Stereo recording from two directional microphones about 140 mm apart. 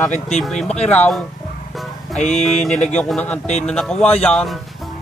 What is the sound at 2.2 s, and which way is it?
Mantra, 55° left (ahead or behind).